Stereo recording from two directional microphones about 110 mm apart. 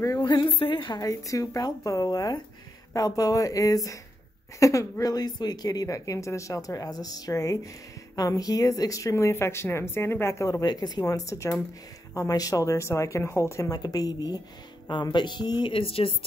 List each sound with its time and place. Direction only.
0.0 s a woman's voice: 35° left (ahead or behind); by 16.3 s 55° left (ahead or behind)